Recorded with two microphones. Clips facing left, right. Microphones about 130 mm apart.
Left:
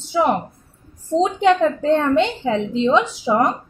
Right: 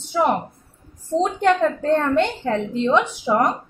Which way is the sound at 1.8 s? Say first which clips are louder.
Left 2 dB; centre (ahead or behind).